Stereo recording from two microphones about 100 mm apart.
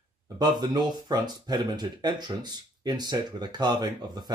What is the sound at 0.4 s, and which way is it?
Speech, 45° right (ahead or behind).